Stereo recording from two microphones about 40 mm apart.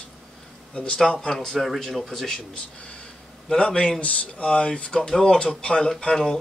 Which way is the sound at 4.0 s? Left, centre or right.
Left.